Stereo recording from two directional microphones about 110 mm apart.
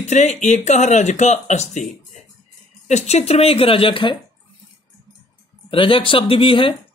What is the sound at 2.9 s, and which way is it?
Speech, 90° left.